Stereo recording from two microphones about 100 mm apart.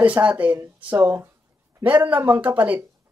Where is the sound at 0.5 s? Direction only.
30° right (ahead or behind).